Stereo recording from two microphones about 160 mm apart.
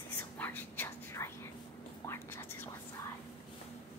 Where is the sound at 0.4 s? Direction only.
10° left (ahead or behind).